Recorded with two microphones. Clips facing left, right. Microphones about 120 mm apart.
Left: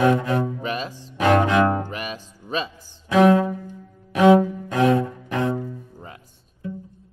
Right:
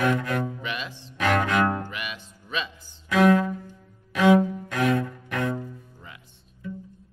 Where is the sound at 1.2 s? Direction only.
25° left (ahead or behind).